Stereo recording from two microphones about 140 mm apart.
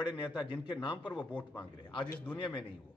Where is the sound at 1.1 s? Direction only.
10° left (ahead or behind).